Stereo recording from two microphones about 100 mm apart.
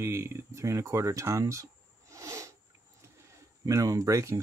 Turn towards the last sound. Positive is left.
turn(degrees=-30)  # may be behind; listen again after turning